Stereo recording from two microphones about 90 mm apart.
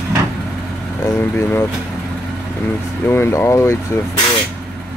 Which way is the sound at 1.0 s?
30° left (ahead or behind).